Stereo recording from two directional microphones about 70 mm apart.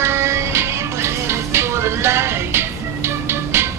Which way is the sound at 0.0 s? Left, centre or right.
Right.